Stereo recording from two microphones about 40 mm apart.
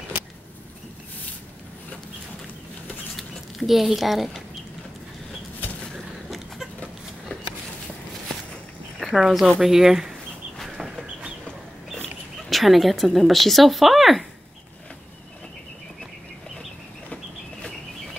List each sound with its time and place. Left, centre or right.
3.2 s speech: centre
9.0 s speech: centre
12.4 s speech: centre
17.1 s vehicle: centre